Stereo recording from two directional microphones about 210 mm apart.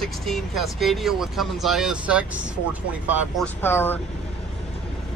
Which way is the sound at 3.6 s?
10° left (ahead or behind).